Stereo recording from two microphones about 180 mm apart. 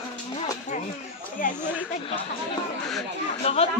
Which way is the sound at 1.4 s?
50° left (ahead or behind).